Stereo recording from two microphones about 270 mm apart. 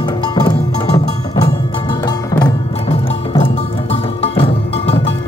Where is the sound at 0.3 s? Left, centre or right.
Centre.